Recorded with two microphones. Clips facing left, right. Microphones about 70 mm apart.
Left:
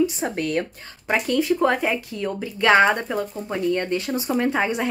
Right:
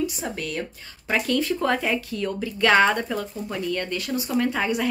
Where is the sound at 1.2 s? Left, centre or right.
Centre.